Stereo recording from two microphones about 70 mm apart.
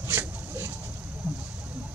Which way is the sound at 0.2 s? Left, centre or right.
Right.